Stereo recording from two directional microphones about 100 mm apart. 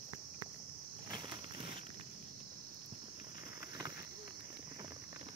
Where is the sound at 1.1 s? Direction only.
45° right (ahead or behind).